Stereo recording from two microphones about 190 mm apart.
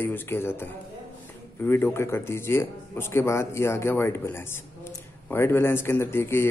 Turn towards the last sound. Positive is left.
turn(degrees=15)  # may be behind; listen again after turning